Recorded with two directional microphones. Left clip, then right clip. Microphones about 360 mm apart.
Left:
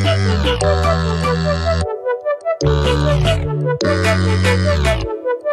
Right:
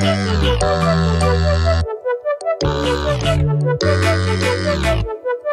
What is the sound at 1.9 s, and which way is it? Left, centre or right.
Music, centre.